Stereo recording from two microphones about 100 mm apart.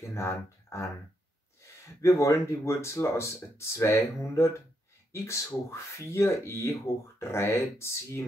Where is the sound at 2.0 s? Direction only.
30° left (ahead or behind).